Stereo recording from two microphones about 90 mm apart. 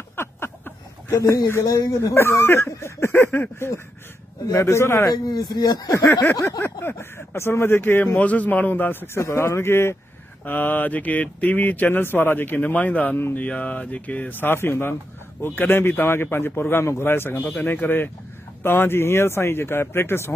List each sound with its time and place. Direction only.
0.1 s a sound: 25° left (ahead or behind)
1.7 s speech: 40° left (ahead or behind)
5.1 s speech: 50° left (ahead or behind)
6.6 s speech: 30° left (ahead or behind)